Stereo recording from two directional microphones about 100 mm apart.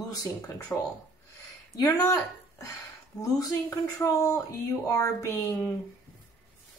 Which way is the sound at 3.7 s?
30° left (ahead or behind).